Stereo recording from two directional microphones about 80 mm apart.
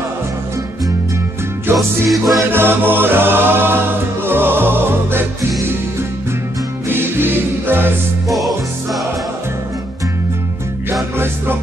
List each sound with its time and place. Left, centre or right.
1.8 s music: centre
2.5 s music: right
6.9 s music: right
8.3 s music: centre